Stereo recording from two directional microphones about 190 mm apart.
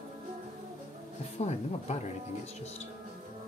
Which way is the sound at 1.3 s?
35° left (ahead or behind).